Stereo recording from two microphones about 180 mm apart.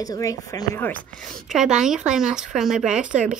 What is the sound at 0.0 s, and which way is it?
Speech, 20° left (ahead or behind).